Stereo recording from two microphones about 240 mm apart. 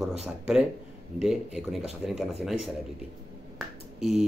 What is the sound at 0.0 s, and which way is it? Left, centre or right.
Speech, centre.